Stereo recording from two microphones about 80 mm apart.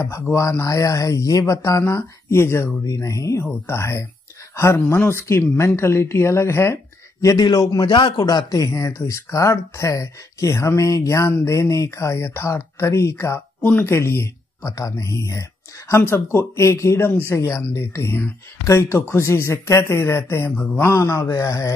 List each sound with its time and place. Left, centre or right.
0.0 s speech: left
3.4 s speech: left
7.3 s a man's voice: left
7.8 s a man's voice: left
8.5 s speech: left
13.6 s speech: left